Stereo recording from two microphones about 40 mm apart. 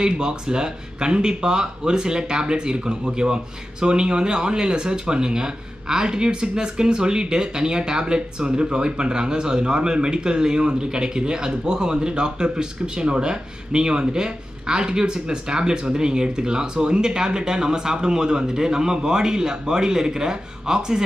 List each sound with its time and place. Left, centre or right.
0.0 s speech: centre